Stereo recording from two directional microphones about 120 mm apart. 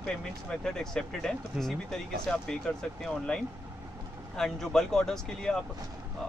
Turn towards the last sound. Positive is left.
turn(degrees=5)  # may be behind; listen again after turning